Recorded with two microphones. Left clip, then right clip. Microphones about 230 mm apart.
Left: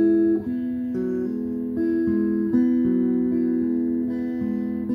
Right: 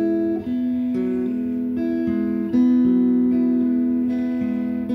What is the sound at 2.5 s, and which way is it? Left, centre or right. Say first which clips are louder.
Guitar: right 6 dB; left.